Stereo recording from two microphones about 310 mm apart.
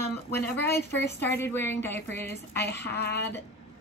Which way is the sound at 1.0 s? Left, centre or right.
Centre.